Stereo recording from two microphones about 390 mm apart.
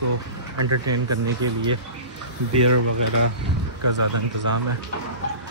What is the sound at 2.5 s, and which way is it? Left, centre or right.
Speech, right.